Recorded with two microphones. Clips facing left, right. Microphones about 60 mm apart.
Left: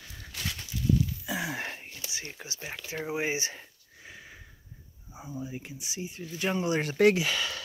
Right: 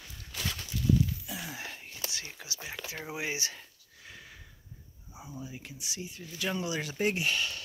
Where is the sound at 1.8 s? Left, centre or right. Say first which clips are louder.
Even; left.